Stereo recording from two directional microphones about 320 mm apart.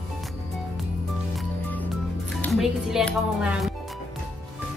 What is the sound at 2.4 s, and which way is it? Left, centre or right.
Speech, centre.